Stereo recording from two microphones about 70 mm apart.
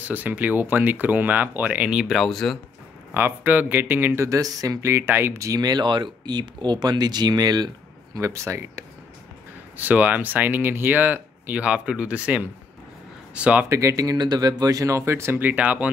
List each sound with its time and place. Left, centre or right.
0.0 s speech: right
2.0 s speech: centre
3.1 s speech: right
4.1 s speech: right
4.8 s speech: right
5.5 s speech: right
8.2 s speech: right
9.8 s speech: right
13.7 s speech: right
14.1 s speech: right
15.3 s speech: right